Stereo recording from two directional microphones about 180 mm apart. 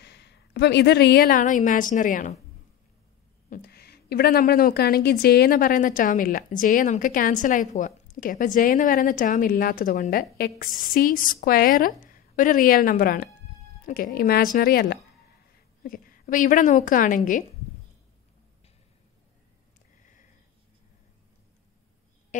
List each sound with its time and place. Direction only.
0.0 s speech: 70° left (ahead or behind); by 2.3 s 45° left (ahead or behind)
3.4 s a woman's voice: 55° left (ahead or behind)
22.3 s speech: 45° left (ahead or behind)